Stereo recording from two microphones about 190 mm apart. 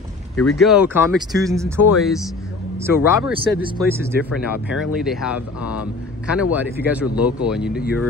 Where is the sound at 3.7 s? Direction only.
15° right (ahead or behind).